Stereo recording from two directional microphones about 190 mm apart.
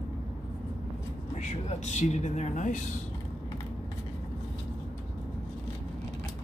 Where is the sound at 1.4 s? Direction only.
40° left (ahead or behind).